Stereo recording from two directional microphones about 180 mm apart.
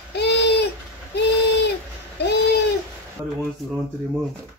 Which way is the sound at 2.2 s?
65° left (ahead or behind).